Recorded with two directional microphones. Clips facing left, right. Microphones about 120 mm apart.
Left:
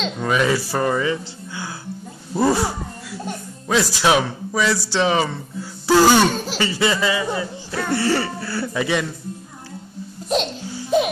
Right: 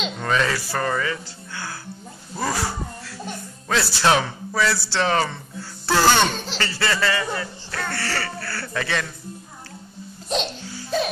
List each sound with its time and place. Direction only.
0.2 s speech: 10° left (ahead or behind)
3.3 s speech: 5° left (ahead or behind)
10.9 s music: 15° left (ahead or behind)